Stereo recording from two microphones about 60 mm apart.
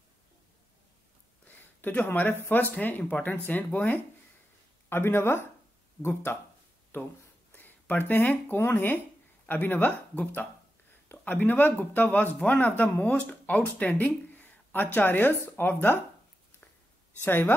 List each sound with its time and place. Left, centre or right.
1.4 s speech: left
4.8 s speech: left
17.2 s speech: left